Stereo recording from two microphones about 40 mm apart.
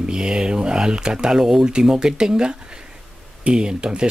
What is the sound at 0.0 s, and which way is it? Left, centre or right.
Speech, right.